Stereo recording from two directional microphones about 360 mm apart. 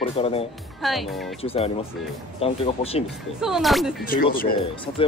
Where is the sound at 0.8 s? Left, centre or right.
Centre.